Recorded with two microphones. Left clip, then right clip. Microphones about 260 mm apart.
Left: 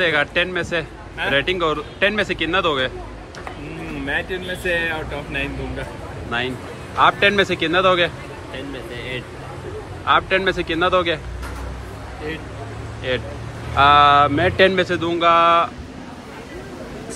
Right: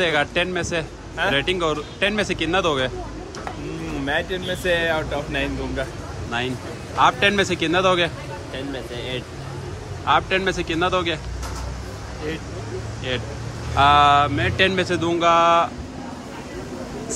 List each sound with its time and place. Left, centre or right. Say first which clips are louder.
0.0 s a man's voice: left 2 dB; centre
4.0 s a man's voice: even; centre
10.0 s a man's voice: left 2 dB; centre
13.1 s a man's voice: left 4 dB; centre